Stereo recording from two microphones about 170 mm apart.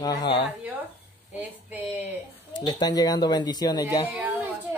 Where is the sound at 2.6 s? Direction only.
25° left (ahead or behind).